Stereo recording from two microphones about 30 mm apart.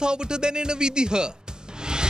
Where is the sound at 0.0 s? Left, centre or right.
Right.